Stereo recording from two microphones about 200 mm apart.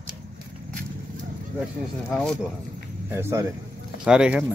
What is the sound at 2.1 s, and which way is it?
Speech, 5° left (ahead or behind).